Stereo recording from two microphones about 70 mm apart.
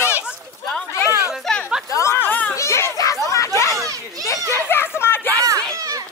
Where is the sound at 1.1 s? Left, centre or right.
Right.